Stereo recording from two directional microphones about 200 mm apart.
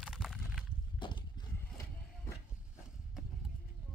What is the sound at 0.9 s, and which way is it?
Horse, 25° left (ahead or behind).